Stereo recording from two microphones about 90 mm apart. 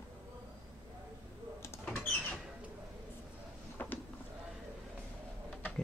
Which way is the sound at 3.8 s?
20° left (ahead or behind).